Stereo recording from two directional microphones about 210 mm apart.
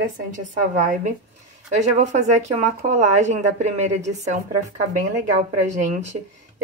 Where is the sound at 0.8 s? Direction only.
35° right (ahead or behind).